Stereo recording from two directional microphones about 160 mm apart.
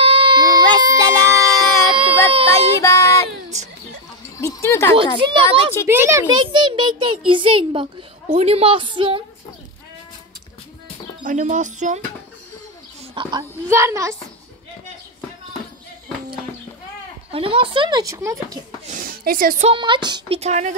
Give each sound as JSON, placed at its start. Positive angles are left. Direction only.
{"t": 0.0, "sound": "baby cry", "side_deg": -35}
{"t": 2.0, "sound": "speech", "side_deg": -35}
{"t": 2.8, "sound": "child singing", "side_deg": 20}
{"t": 3.5, "sound": "speech", "side_deg": -45}
{"t": 4.4, "sound": "music", "side_deg": 15}
{"t": 5.2, "sound": "a child's voice", "side_deg": -35}
{"t": 5.9, "sound": "a child's voice", "side_deg": -15}
{"t": 11.2, "sound": "speech", "side_deg": -55}
{"t": 13.1, "sound": "a woman's voice", "side_deg": -30}
{"t": 13.4, "sound": "a child's voice", "side_deg": -15}
{"t": 17.3, "sound": "speech", "side_deg": -35}
{"t": 18.9, "sound": "a sound", "side_deg": -60}
{"t": 19.6, "sound": "speech", "side_deg": -30}
{"t": 20.3, "sound": "speech", "side_deg": -45}